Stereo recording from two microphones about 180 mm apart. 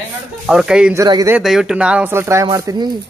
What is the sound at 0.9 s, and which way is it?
Speech, 20° right (ahead or behind).